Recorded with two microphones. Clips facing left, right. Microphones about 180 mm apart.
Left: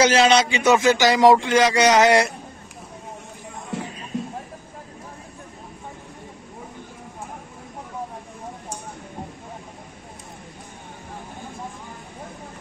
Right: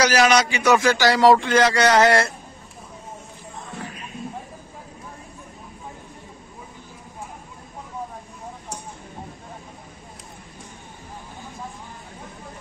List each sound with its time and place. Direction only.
0.0 s speech: 25° left (ahead or behind)
3.7 s music: 90° left
4.1 s a sound: 90° left